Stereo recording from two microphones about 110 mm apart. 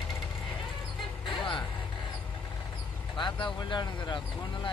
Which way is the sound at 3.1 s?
45° left (ahead or behind).